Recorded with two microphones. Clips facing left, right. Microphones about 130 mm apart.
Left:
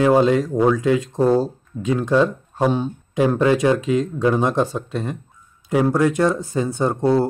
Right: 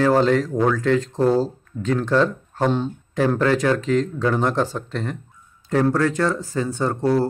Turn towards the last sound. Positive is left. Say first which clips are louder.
# left 2 dB
turn(degrees=15)  # may be behind; listen again after turning